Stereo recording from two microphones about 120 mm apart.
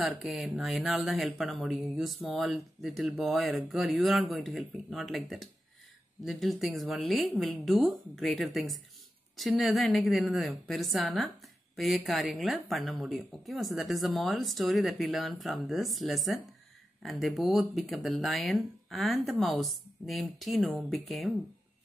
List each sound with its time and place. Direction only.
0.2 s a woman's voice: centre (ahead or behind)